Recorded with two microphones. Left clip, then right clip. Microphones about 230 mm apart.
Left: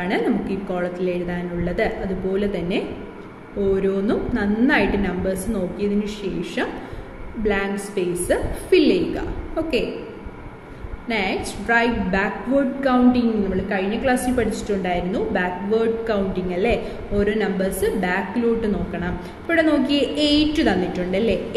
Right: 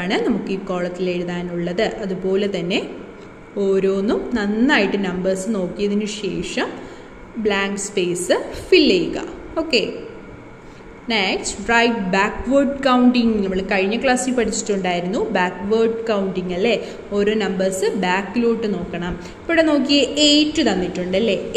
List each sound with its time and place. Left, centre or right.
0.0 s a woman's voice: right
11.1 s a woman's voice: right